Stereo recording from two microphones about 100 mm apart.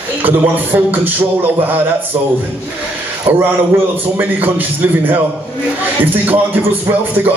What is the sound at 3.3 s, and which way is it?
A man's voice, 20° right (ahead or behind).